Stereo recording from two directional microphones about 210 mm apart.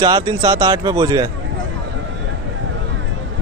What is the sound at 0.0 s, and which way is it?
Speech, 20° right (ahead or behind).